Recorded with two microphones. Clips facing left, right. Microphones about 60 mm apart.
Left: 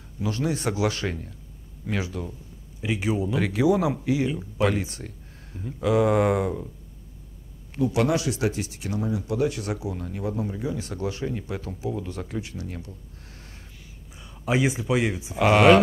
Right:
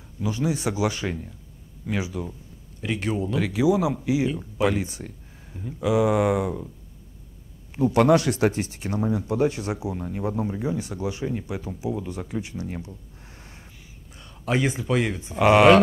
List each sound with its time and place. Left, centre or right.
0.3 s speech: centre
2.8 s speech: centre
7.8 s speech: right; by 12.4 s centre
12.4 s a sound: right
14.1 s speech: centre